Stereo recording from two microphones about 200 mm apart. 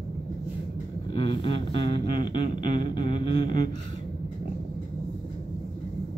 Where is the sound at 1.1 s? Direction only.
25° left (ahead or behind).